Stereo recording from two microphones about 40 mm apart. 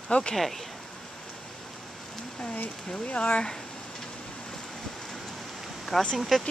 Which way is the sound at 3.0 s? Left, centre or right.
Left.